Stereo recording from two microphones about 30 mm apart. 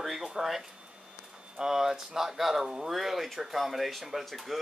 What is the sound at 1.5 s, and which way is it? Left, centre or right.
Speech, centre.